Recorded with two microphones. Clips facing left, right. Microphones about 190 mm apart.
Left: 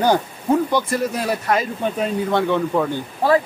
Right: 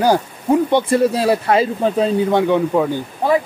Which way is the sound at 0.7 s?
30° right (ahead or behind).